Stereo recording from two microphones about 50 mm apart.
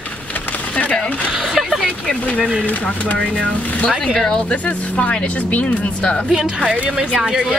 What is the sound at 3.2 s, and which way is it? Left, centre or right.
Speech, centre.